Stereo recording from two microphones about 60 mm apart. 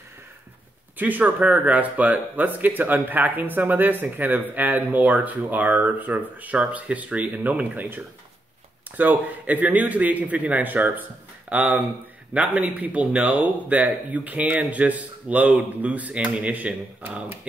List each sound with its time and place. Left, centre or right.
0.9 s speech: right